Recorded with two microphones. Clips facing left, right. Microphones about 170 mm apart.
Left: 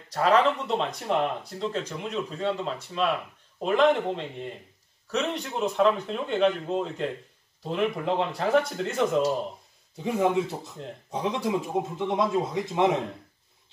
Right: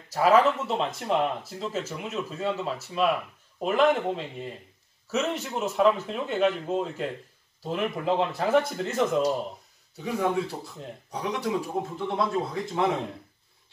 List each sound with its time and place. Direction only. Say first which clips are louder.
0.1 s speech: right 1 dB; 5° right (ahead or behind)
9.9 s speech: left 2 dB; 25° left (ahead or behind)